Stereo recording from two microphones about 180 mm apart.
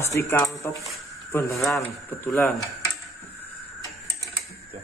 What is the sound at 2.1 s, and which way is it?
Speech, 15° left (ahead or behind).